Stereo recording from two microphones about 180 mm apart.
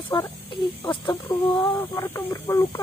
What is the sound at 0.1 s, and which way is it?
Speech, 25° left (ahead or behind).